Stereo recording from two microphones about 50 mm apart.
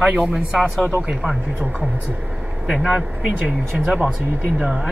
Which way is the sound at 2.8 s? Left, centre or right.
Centre.